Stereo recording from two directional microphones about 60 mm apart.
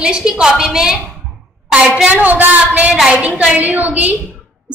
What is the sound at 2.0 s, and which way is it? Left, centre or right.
A woman's voice, right.